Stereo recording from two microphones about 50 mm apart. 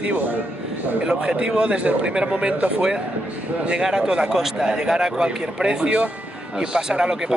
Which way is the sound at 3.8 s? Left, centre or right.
Centre.